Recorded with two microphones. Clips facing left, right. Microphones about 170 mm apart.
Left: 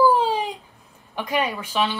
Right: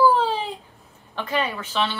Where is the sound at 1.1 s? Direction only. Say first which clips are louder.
Left 1 dB; 10° left (ahead or behind).